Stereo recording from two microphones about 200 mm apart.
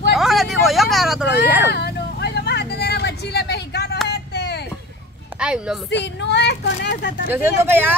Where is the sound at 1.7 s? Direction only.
55° left (ahead or behind).